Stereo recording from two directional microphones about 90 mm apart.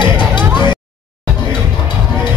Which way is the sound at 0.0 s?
60° left (ahead or behind).